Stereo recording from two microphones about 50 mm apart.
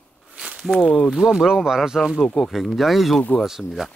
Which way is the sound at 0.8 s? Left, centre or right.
Centre.